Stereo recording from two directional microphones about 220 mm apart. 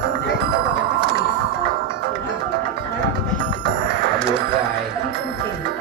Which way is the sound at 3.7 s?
50° right (ahead or behind).